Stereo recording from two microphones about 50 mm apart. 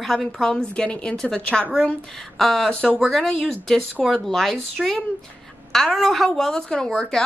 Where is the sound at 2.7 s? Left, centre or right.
Centre.